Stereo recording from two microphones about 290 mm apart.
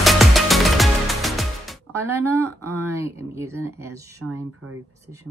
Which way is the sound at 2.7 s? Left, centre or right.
Centre.